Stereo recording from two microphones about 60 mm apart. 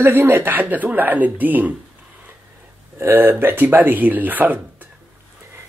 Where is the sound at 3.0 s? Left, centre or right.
Right.